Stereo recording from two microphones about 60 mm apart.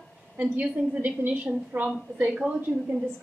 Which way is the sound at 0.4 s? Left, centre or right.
Right.